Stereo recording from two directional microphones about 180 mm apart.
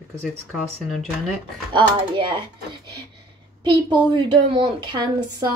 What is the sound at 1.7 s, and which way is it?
Speech, 25° right (ahead or behind).